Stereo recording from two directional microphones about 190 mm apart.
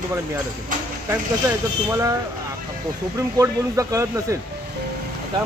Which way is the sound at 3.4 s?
15° right (ahead or behind).